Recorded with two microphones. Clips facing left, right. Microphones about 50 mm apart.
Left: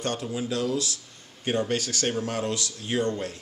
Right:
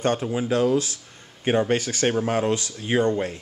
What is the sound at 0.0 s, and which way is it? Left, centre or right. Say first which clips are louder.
Speech: right 6 dB; right.